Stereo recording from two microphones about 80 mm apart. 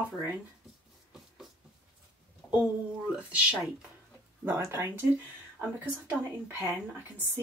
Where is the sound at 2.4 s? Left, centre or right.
Left.